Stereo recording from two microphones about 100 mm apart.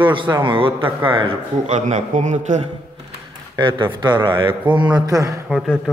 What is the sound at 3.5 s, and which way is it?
Speech, 55° right (ahead or behind).